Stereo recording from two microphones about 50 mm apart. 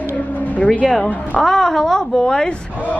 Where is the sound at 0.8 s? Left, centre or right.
Centre.